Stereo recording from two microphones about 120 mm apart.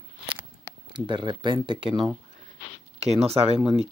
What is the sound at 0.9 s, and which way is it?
Speech, 40° right (ahead or behind).